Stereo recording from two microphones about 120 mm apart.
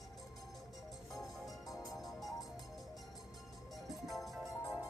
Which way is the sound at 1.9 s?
Centre (ahead or behind).